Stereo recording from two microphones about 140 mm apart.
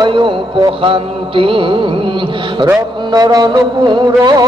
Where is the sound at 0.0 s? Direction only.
30° right (ahead or behind).